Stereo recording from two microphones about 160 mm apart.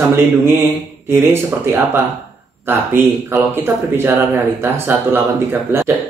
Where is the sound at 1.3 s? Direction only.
15° right (ahead or behind).